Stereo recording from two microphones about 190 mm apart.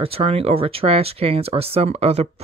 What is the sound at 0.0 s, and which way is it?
Speech, 30° right (ahead or behind).